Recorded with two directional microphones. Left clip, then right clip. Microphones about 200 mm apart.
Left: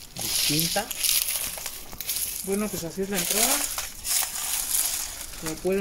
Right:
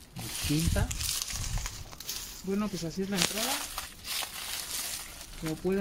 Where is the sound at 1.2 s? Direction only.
35° right (ahead or behind).